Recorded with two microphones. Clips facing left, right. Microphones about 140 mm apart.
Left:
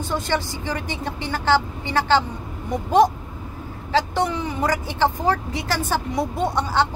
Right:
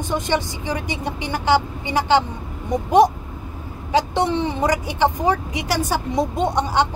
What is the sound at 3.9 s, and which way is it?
Speech, 25° right (ahead or behind).